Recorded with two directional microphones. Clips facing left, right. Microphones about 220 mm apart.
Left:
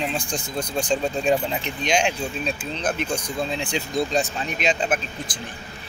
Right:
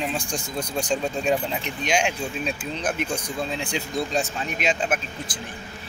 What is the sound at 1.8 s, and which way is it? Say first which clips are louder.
Speech: left 2 dB; 5° right (ahead or behind).